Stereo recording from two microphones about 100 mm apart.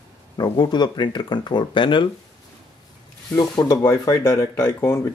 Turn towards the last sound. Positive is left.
turn(degrees=25)  # may be behind; listen again after turning